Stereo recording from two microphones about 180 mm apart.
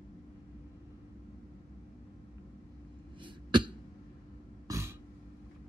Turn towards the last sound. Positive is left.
turn(degrees=-15)  # may be behind; listen again after turning